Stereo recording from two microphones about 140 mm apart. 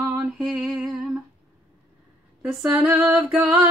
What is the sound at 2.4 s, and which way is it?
Female singing, 10° right (ahead or behind).